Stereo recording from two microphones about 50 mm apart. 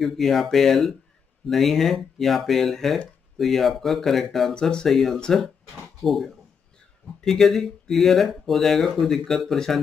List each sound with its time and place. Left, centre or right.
0.0 s speech: centre
4.6 s speech: centre
4.8 s speech: centre